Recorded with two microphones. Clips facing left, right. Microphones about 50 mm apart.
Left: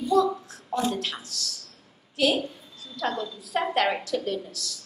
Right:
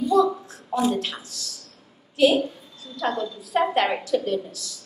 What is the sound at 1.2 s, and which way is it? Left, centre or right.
Speech, right.